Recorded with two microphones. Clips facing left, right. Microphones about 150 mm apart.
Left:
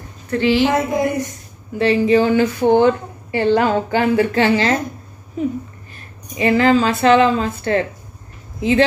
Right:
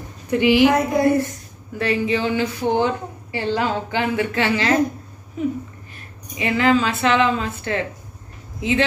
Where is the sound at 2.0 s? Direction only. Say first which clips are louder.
Left 7 dB; 45° left (ahead or behind).